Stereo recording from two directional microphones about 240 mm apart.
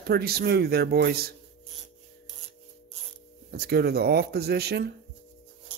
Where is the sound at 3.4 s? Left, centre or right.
Right.